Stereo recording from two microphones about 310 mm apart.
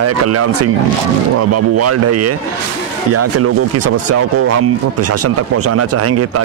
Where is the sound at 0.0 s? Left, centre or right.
Right.